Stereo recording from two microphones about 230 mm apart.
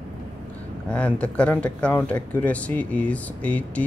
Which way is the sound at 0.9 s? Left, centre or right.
Centre.